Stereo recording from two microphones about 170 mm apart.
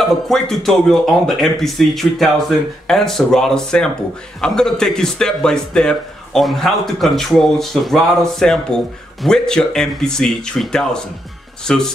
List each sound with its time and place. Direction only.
0.0 s speech: centre (ahead or behind)